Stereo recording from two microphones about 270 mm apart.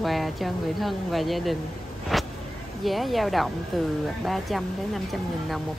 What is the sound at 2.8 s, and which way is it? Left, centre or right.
Speech, centre.